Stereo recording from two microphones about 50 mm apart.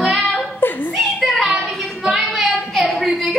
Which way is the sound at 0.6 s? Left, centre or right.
Left.